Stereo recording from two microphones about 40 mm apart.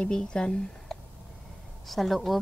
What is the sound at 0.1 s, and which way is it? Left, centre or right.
Speech, centre.